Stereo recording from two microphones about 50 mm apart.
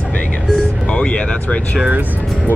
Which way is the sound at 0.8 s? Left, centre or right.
Left.